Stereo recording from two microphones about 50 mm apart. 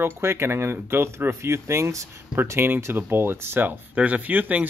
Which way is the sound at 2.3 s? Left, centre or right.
Right.